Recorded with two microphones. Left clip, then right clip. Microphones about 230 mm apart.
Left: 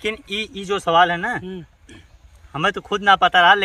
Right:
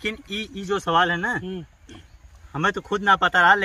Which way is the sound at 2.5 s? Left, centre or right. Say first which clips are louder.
Left 2 dB; centre.